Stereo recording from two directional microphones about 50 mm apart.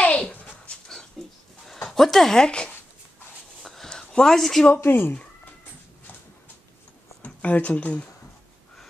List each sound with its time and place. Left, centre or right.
0.0 s dog: left
0.7 s dog: centre
1.9 s speech: centre
3.6 s a sound: centre
4.8 s speech: left
7.2 s speech: left